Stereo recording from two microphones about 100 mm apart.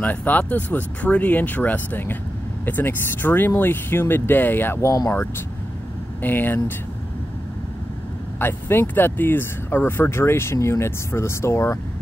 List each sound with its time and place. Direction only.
0.0 s speech: 15° left (ahead or behind)
6.2 s speech: 20° left (ahead or behind)
8.4 s speech: 20° left (ahead or behind)